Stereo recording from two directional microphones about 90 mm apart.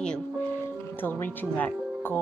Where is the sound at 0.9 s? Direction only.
20° left (ahead or behind).